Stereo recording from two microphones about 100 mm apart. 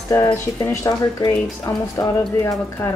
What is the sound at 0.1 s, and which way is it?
Speech, 30° left (ahead or behind).